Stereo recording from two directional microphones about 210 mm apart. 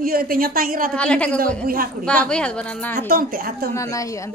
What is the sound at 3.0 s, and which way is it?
Speech, 45° right (ahead or behind).